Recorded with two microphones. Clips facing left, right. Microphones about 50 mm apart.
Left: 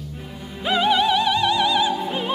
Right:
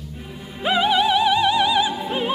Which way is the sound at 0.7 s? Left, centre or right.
Centre.